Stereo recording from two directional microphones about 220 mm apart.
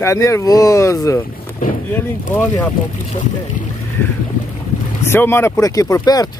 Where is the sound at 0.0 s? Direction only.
15° left (ahead or behind).